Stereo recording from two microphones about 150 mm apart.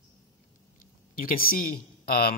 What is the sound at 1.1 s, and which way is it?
A man's voice, 75° left (ahead or behind).